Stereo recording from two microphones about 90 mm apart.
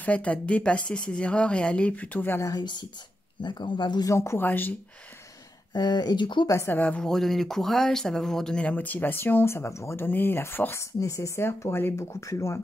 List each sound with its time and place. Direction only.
0.0 s speech: 15° left (ahead or behind)
3.4 s speech: 55° left (ahead or behind)
4.1 s speech: 30° left (ahead or behind)
5.7 s speech: 50° left (ahead or behind)
6.4 s speech: 35° left (ahead or behind)
6.7 s speech: 15° left (ahead or behind)
7.1 s speech: 5° left (ahead or behind); by 10.9 s 25° left (ahead or behind)
11.0 s speech: 35° left (ahead or behind)